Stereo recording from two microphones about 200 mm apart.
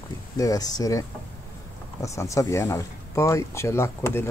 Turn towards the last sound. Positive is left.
turn(degrees=10)  # may be behind; listen again after turning